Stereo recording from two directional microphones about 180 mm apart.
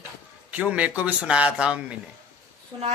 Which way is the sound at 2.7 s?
25° right (ahead or behind).